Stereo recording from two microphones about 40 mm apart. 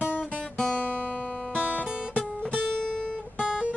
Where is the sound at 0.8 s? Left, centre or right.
Left.